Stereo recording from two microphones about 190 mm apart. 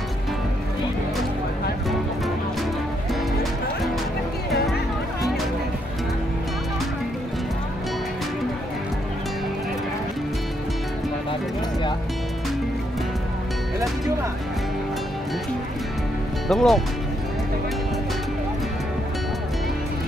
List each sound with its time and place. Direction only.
16.4 s speech: centre (ahead or behind)